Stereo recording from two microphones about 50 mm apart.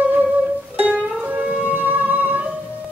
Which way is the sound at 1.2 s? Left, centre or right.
Right.